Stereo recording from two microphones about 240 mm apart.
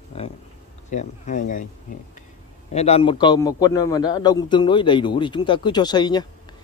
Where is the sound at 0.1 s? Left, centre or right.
Left.